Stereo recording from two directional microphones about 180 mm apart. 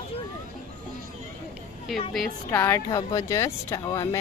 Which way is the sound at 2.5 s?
15° left (ahead or behind).